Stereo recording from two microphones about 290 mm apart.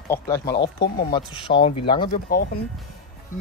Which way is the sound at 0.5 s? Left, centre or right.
Left.